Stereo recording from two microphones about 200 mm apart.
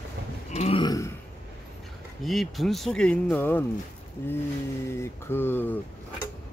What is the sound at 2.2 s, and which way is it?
Speech, centre (ahead or behind).